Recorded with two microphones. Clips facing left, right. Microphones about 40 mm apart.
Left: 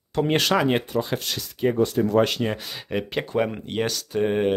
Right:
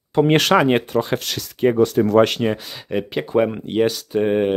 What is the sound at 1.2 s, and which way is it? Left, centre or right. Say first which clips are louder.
Speech: right 3 dB; right.